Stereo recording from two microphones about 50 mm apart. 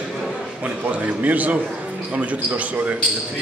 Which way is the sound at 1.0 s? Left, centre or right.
Right.